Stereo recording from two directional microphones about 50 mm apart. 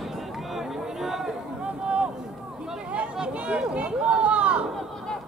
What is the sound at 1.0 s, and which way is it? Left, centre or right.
Chatter, centre.